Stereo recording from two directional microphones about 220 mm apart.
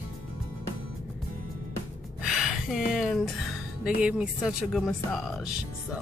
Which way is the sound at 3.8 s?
5° right (ahead or behind).